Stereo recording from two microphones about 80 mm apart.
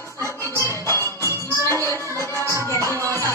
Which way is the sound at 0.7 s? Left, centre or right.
Left.